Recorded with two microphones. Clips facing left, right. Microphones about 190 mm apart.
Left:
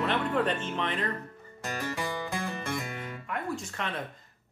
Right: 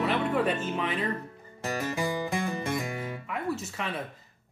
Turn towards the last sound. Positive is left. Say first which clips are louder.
# right 1 dB
turn(degrees=-5)  # may be behind; listen again after turning